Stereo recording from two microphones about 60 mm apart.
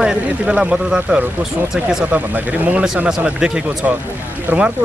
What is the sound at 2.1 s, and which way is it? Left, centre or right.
Speech, right.